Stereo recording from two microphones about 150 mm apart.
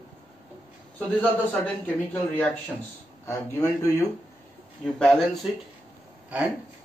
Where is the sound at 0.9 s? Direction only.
10° left (ahead or behind).